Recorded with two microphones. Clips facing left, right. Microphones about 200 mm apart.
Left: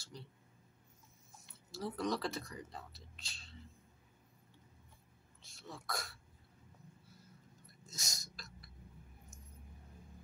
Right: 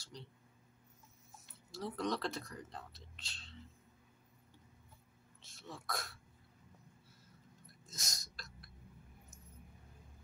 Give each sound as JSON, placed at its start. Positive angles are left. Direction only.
{"t": 0.1, "sound": "speech", "side_deg": 5}
{"t": 1.3, "sound": "speech", "side_deg": 0}
{"t": 5.4, "sound": "speech", "side_deg": 0}
{"t": 7.9, "sound": "a sound", "side_deg": 0}